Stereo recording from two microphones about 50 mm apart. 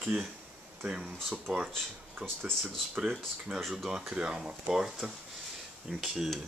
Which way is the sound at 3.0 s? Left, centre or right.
Centre.